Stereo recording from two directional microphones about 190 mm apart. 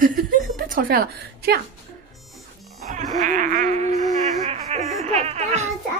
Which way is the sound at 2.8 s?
40° right (ahead or behind).